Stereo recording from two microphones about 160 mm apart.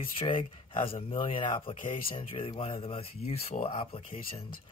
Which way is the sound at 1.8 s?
55° left (ahead or behind).